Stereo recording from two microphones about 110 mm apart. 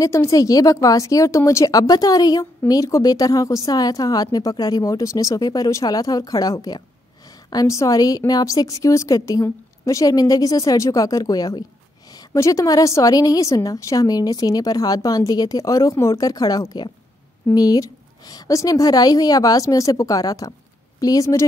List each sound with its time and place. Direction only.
0.0 s a woman's voice: 30° left (ahead or behind)